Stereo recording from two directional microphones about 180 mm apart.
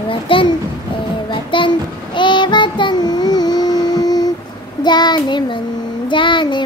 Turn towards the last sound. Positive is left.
turn(degrees=25)  # may be behind; listen again after turning